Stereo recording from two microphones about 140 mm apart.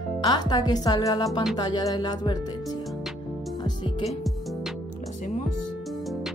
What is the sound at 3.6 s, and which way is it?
Music, 35° left (ahead or behind).